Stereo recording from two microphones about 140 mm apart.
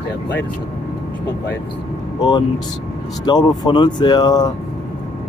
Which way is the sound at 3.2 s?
30° left (ahead or behind).